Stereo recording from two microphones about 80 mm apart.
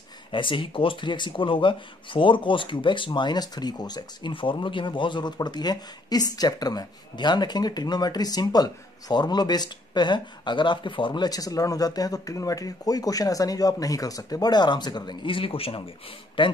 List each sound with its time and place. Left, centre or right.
0.3 s speech: left
3.2 s speech: left
11.2 s speech: left